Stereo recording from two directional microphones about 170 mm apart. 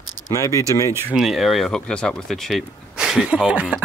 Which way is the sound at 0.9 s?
5° right (ahead or behind).